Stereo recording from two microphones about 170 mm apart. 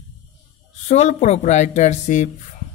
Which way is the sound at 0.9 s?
40° left (ahead or behind).